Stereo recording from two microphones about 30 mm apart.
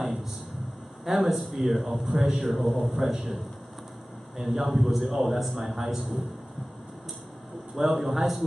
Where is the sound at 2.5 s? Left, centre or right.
Centre.